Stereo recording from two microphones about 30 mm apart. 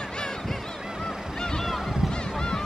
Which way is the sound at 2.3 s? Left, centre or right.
Centre.